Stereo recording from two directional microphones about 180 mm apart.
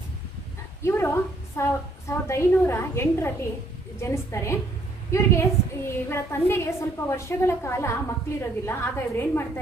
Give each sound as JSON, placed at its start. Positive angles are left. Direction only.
{"t": 0.8, "sound": "a woman's voice", "side_deg": 15}